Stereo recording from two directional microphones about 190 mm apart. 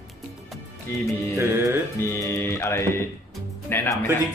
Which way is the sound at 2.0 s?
15° left (ahead or behind).